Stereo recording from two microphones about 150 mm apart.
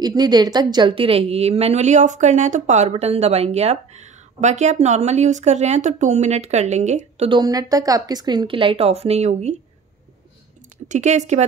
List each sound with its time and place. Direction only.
0.0 s a woman's voice: 25° right (ahead or behind); by 7.2 s 50° right (ahead or behind)
7.2 s speech: 25° right (ahead or behind); by 9.6 s 50° right (ahead or behind)
10.9 s a woman's voice: 50° right (ahead or behind)